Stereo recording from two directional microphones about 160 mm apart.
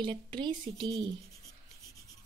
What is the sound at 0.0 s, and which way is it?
Speech, 30° right (ahead or behind).